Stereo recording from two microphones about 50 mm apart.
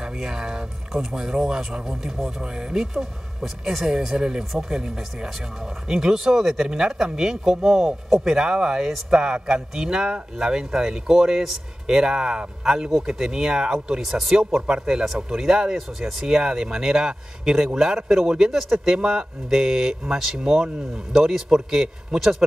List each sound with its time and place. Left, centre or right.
0.0 s speech: centre